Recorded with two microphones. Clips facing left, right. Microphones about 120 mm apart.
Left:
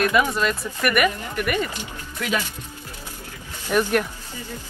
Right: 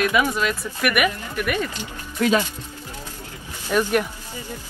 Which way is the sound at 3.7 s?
5° left (ahead or behind).